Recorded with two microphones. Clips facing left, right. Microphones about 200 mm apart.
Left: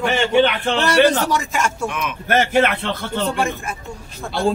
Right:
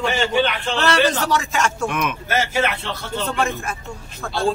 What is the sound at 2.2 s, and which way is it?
Speech, 60° left (ahead or behind).